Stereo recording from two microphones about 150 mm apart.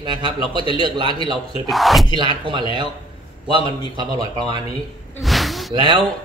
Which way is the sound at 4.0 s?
30° right (ahead or behind).